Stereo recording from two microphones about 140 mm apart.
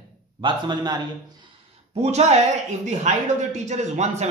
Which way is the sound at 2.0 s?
50° right (ahead or behind).